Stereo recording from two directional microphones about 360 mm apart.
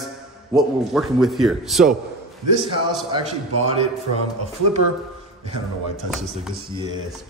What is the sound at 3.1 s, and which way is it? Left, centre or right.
Speech, centre.